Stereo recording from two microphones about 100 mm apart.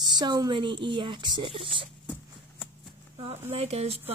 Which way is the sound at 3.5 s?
90° right.